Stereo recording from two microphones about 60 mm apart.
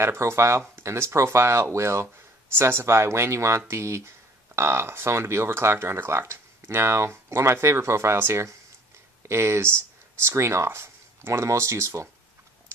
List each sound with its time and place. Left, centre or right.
0.0 s speech: right